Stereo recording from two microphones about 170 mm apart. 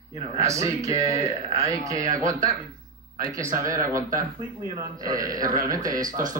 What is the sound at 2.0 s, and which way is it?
Speech, 45° right (ahead or behind).